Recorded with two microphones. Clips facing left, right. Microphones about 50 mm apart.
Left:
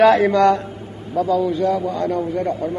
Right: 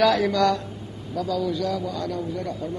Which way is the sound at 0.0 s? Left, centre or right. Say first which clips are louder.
Left 7 dB; left.